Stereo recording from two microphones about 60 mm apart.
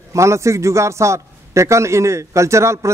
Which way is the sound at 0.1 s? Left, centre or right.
Right.